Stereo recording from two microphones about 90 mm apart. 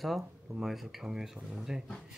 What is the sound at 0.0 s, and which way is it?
Speech, centre (ahead or behind).